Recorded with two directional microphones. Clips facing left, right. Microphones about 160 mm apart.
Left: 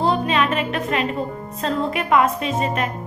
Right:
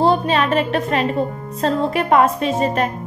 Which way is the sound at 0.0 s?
35° right (ahead or behind).